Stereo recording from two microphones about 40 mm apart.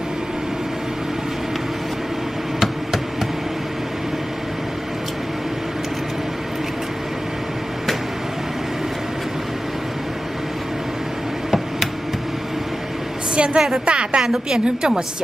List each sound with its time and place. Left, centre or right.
2.6 s a sound: centre
13.4 s a woman's voice: right
14.2 s a woman's voice: centre